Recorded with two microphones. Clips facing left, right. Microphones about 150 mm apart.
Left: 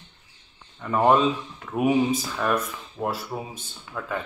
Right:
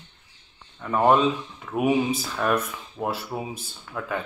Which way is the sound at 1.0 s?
5° right (ahead or behind).